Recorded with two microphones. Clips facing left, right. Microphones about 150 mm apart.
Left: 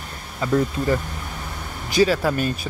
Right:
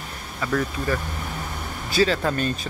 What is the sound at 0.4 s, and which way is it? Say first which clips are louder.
Speech: left 4 dB; 25° left (ahead or behind).